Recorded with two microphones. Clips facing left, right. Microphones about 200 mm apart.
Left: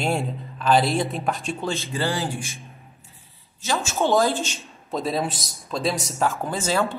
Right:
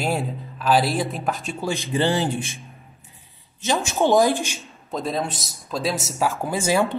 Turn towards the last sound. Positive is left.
turn(degrees=-15)  # may be behind; listen again after turning